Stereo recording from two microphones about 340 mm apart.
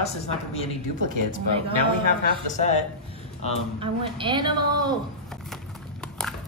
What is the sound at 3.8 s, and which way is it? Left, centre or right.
A woman's voice, centre.